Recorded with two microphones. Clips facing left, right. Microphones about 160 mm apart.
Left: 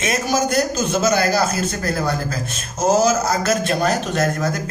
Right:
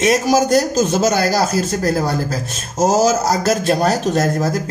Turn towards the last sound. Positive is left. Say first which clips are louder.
# right 3 dB
turn(degrees=-35)  # may be behind; listen again after turning